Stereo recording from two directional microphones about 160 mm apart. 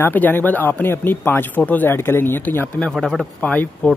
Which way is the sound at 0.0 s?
10° left (ahead or behind).